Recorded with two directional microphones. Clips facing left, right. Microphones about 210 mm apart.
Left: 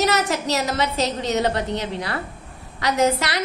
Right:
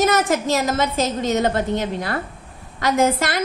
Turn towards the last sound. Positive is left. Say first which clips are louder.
# right 2 dB
turn(degrees=-50)  # may be behind; listen again after turning